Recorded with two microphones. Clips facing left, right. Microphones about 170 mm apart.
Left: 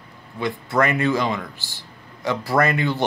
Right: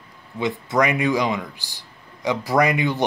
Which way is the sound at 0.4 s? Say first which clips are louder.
Right 1 dB; 20° right (ahead or behind).